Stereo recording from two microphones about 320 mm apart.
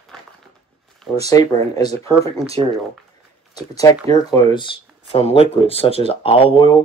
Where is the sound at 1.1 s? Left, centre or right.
Centre.